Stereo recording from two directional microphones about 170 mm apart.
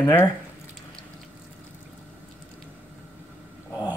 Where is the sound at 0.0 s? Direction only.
15° left (ahead or behind).